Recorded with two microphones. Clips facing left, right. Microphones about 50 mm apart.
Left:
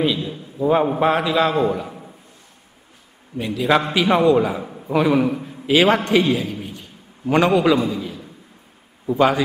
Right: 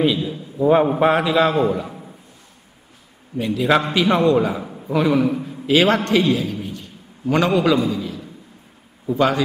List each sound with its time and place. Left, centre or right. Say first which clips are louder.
0.0 s a man's voice: right 2 dB; centre
1.7 s a sound: right 1 dB; centre
3.3 s a man's voice: right 1 dB; centre
5.9 s a man's voice: even; centre
6.7 s a sound: right 3 dB; centre
7.5 s a man's voice: left 1 dB; centre